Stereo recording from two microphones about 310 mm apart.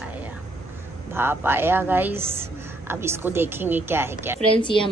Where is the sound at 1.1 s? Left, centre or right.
Centre.